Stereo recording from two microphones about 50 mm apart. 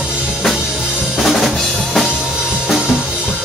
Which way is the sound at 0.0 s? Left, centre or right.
Right.